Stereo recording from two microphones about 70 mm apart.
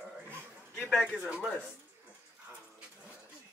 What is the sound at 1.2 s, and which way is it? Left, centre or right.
Speech, centre.